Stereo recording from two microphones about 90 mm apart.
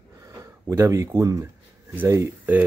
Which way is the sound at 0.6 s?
30° right (ahead or behind).